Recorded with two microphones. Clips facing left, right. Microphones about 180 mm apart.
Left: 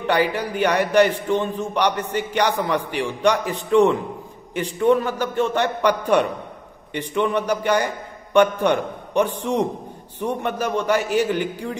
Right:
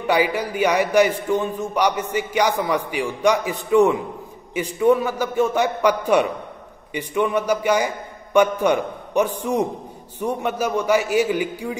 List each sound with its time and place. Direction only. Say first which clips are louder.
0.0 s a man's voice: right 1 dB; 10° right (ahead or behind)